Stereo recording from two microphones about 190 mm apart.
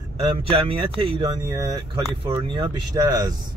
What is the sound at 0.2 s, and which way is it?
A man's voice, 30° right (ahead or behind).